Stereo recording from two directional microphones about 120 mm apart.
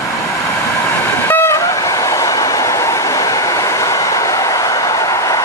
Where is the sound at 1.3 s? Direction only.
20° left (ahead or behind).